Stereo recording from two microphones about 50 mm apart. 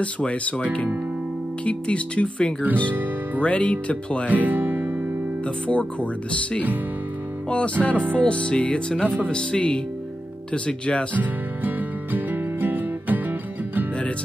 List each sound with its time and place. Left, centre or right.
0.0 s speech: left
4.3 s speech: right
5.7 s speech: left
7.4 s speech: left
11.1 s music: right